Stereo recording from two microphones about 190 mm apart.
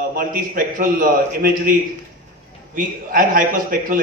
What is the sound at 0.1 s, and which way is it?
A man's voice, 45° right (ahead or behind).